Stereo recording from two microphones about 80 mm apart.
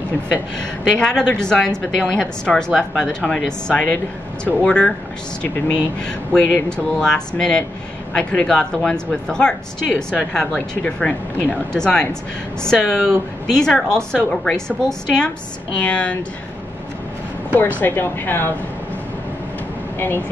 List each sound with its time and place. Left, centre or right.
0.8 s speech: centre
17.7 s speech: left
20.0 s speech: left